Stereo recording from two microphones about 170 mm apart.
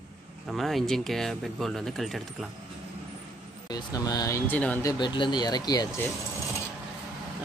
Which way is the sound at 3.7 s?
20° left (ahead or behind).